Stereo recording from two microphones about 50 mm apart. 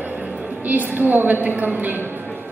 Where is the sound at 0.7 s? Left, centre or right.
Right.